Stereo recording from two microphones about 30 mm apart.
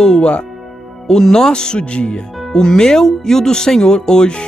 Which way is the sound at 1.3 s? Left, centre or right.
Left.